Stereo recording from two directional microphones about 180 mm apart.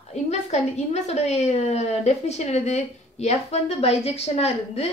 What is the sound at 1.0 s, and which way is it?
A woman's voice, 35° left (ahead or behind).